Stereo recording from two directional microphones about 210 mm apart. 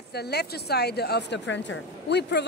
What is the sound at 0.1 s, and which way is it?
A woman's voice, 50° left (ahead or behind).